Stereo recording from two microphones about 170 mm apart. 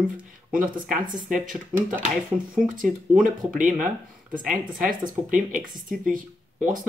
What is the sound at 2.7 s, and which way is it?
Speech, 50° right (ahead or behind).